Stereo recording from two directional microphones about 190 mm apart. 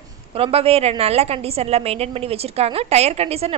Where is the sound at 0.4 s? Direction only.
30° right (ahead or behind).